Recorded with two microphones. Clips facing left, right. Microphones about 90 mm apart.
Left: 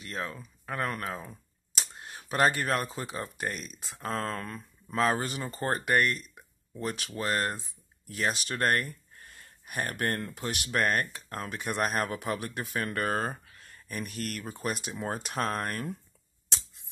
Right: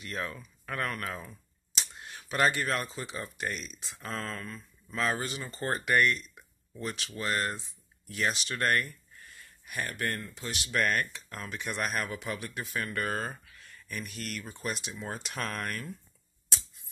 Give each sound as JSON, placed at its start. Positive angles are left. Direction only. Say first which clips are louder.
{"t": 0.0, "sound": "speech", "louder": "even", "side_deg": 30}
{"t": 1.3, "sound": "a sound", "louder": "even", "side_deg": 40}
{"t": 2.6, "sound": "speech", "louder": "left 2 dB", "side_deg": 45}
{"t": 4.8, "sound": "speech", "louder": "left 4 dB", "side_deg": 40}
{"t": 5.7, "sound": "speech", "louder": "even", "side_deg": 35}
{"t": 7.2, "sound": "speech", "louder": "left 1 dB", "side_deg": 35}
{"t": 9.2, "sound": "speech", "louder": "left 1 dB", "side_deg": 50}
{"t": 10.7, "sound": "speech", "louder": "left 1 dB", "side_deg": 35}